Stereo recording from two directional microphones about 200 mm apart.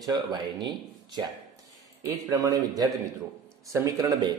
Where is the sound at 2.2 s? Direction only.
15° right (ahead or behind).